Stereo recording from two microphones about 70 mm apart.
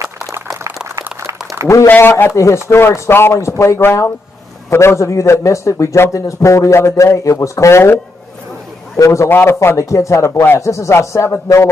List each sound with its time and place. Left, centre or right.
1.2 s a sound: right
2.0 s a man's voice: left
2.3 s a man's voice: left
8.9 s a man's voice: left
9.3 s a man's voice: left